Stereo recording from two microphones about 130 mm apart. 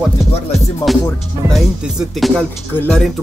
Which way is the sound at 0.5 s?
Centre (ahead or behind).